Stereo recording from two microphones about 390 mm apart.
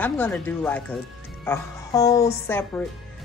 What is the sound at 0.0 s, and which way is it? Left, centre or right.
A woman's voice, centre.